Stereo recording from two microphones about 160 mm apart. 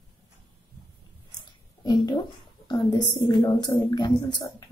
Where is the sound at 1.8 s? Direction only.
25° left (ahead or behind).